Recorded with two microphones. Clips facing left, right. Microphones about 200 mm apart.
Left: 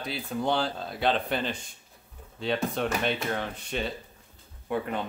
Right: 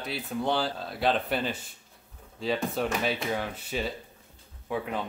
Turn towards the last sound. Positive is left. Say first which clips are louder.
# left 2 dB
turn(degrees=0)  # may be behind; listen again after turning